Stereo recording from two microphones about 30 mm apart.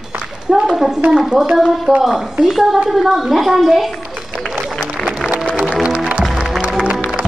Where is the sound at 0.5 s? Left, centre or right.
Centre.